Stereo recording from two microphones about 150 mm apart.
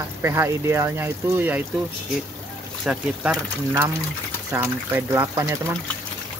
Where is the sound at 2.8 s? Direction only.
5° right (ahead or behind).